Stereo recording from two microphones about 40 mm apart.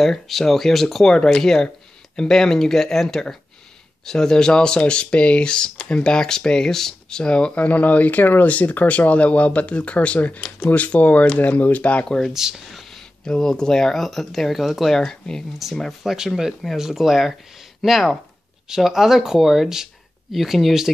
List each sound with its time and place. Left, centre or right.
0.0 s speech: centre
1.0 s speech: centre
7.2 s speech: left
7.6 s speech: left
12.3 s speech: centre
12.9 s speech: centre